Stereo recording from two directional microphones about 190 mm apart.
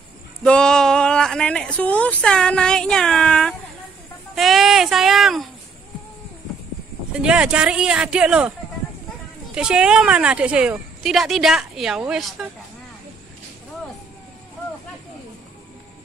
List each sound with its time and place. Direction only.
0.4 s speech: 5° left (ahead or behind)
4.4 s a sound: centre (ahead or behind)
7.2 s speech: 5° right (ahead or behind)